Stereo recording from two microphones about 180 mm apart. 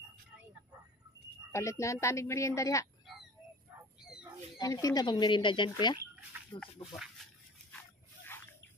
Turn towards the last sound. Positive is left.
turn(degrees=0)  # may be behind; listen again after turning